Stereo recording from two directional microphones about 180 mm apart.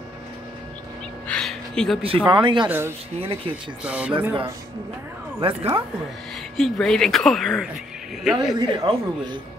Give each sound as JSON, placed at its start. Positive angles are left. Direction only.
{"t": 1.2, "sound": "a sound", "side_deg": 5}
{"t": 2.0, "sound": "speech", "side_deg": -25}
{"t": 3.8, "sound": "speech", "side_deg": -5}
{"t": 4.3, "sound": "speech", "side_deg": -25}
{"t": 6.5, "sound": "speech", "side_deg": 0}
{"t": 8.5, "sound": "speech", "side_deg": -25}